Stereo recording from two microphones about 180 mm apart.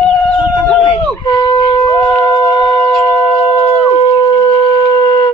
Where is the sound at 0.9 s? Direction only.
25° left (ahead or behind).